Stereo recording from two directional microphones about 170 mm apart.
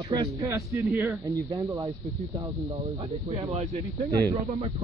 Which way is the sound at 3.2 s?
35° right (ahead or behind).